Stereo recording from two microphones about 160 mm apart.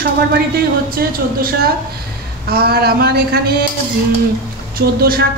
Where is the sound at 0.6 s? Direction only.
65° right (ahead or behind).